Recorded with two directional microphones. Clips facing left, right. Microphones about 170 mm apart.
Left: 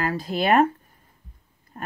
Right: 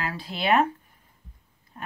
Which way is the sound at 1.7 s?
45° left (ahead or behind).